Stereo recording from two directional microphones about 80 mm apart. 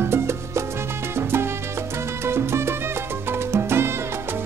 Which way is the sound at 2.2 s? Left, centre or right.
Right.